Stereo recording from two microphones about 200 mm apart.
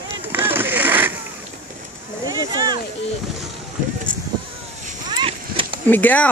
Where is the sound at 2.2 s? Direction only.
20° right (ahead or behind).